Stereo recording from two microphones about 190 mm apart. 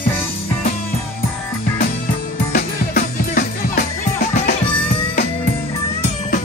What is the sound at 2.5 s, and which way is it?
Music, 55° left (ahead or behind).